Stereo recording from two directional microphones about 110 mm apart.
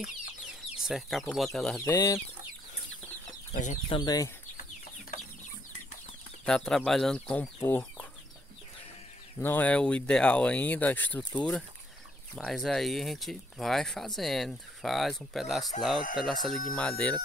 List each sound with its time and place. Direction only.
0.0 s speech: 5° right (ahead or behind)
1.9 s speech: 30° left (ahead or behind)
3.9 s speech: 35° left (ahead or behind)
6.4 s speech: 5° left (ahead or behind)
7.6 s chicken: 15° left (ahead or behind)
9.4 s speech: 15° left (ahead or behind)